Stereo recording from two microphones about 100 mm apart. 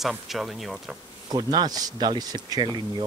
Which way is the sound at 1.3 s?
45° right (ahead or behind).